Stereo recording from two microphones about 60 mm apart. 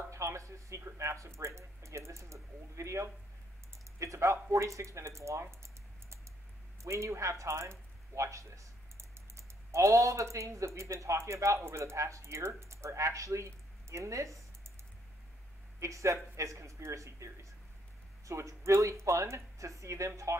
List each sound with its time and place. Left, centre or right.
0.1 s speech: right
15.8 s speech: right